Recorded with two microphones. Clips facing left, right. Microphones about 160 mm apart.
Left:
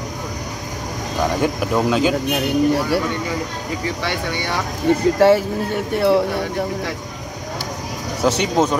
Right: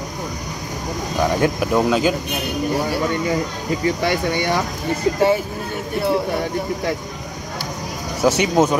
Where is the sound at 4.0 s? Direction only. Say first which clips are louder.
Right 4 dB; 45° right (ahead or behind).